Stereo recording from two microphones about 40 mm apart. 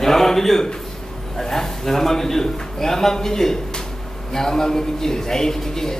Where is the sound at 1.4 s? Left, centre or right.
Centre.